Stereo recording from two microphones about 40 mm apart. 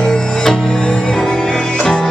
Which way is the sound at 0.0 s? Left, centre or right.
Centre.